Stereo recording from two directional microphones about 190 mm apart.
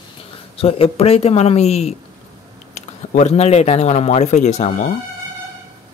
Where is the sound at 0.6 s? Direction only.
30° left (ahead or behind).